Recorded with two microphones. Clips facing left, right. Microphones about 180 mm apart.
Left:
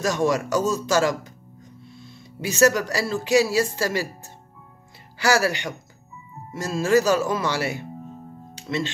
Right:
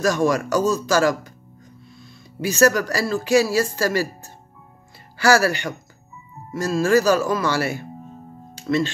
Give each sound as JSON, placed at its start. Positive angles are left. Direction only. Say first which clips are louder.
{"t": 0.0, "sound": "speech", "louder": "right 3 dB", "side_deg": 20}